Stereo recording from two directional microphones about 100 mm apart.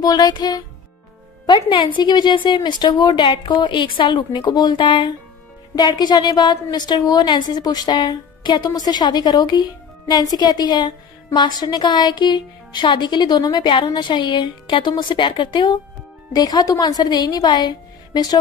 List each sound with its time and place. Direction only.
0.0 s a woman's voice: 40° left (ahead or behind)